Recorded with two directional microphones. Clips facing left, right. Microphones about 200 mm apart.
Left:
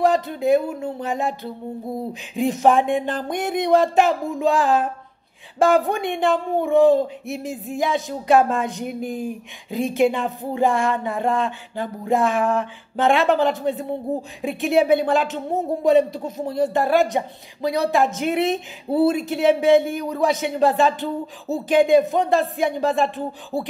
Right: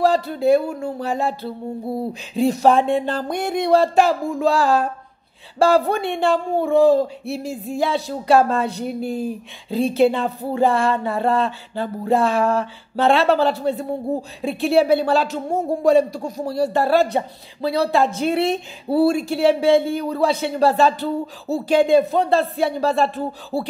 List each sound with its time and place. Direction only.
0.4 s speech: 20° left (ahead or behind)